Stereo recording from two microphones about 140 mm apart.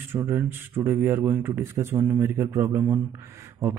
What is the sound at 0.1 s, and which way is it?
Speech, 15° right (ahead or behind).